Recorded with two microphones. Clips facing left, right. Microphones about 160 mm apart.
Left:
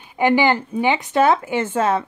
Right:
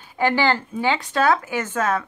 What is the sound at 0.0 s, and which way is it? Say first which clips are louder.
Speech: left 4 dB; 20° left (ahead or behind).